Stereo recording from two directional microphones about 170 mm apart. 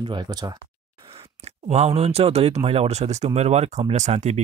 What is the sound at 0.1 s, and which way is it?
Speech, 25° right (ahead or behind).